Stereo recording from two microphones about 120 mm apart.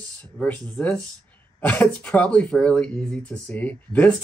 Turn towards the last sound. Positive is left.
turn(degrees=15)  # may be behind; listen again after turning